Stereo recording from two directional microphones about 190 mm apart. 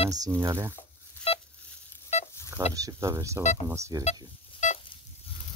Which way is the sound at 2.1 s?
35° left (ahead or behind).